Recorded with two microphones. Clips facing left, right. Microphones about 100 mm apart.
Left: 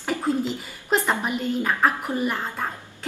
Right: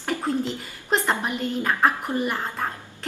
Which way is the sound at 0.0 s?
Centre (ahead or behind).